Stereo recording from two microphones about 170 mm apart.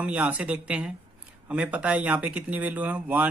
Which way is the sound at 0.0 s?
5° right (ahead or behind).